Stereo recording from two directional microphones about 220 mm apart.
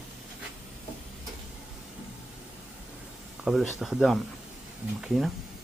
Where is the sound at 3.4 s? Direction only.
Centre (ahead or behind).